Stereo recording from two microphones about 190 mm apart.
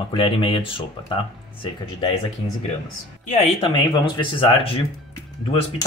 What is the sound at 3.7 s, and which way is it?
Speech, 25° left (ahead or behind).